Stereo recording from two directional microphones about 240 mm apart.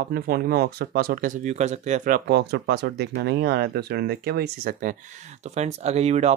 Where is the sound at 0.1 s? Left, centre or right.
Right.